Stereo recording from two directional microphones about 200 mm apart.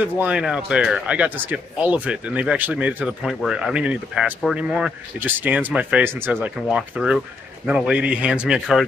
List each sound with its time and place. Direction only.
0.0 s a man's voice: 5° right (ahead or behind)